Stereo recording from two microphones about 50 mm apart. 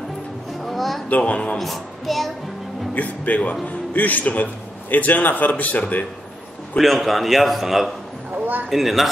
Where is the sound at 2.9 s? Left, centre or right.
Left.